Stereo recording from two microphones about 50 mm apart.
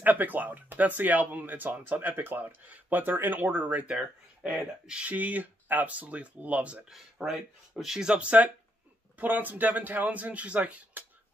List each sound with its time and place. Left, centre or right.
0.0 s speech: right
1.9 s speech: right
3.8 s speech: right
6.9 s speech: centre; by 8.5 s right
9.2 s speech: right